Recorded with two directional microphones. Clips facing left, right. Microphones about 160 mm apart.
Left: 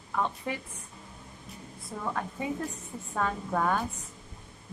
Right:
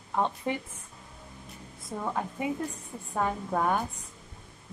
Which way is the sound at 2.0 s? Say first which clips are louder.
Right 2 dB; 15° right (ahead or behind).